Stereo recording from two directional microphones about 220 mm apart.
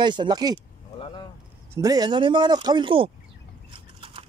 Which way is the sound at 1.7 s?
15° right (ahead or behind).